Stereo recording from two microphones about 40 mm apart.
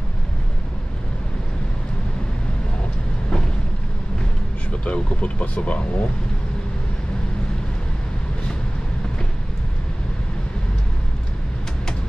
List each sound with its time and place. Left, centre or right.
4.8 s speech: left